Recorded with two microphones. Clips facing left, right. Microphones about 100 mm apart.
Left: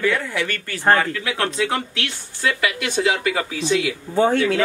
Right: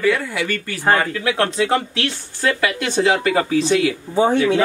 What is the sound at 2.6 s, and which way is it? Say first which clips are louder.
Speech: right 2 dB; 35° right (ahead or behind).